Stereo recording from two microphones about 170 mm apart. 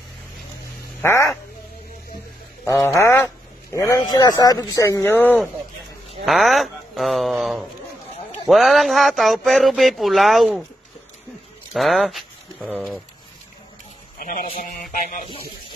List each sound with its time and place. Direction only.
1.0 s speech: 15° left (ahead or behind)
2.6 s speech: 20° left (ahead or behind)
6.2 s speech: centre (ahead or behind)
11.7 s speech: centre (ahead or behind)
14.2 s a man's voice: 50° left (ahead or behind)